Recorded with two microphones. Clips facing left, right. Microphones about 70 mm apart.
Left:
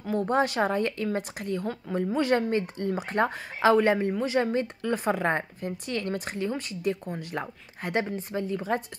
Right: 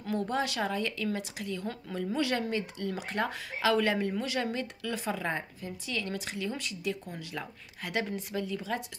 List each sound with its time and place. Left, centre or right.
0.1 s speech: left